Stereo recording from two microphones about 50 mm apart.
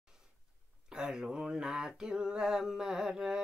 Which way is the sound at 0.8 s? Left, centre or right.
Centre.